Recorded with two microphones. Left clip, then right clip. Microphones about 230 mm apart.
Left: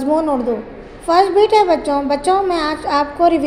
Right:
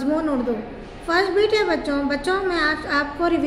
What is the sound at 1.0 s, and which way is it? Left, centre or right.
A woman's voice, centre.